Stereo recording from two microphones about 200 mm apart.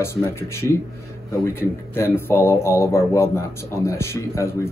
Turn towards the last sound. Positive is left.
turn(degrees=15)  # may be behind; listen again after turning